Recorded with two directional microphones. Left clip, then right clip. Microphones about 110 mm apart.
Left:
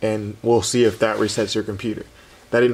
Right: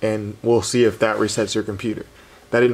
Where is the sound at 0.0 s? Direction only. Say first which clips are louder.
Even; centre (ahead or behind).